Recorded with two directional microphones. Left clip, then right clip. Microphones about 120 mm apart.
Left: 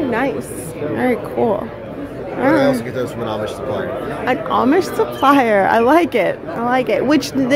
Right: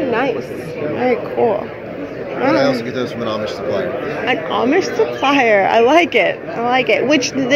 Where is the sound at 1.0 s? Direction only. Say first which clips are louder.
Right 2 dB; 90° left.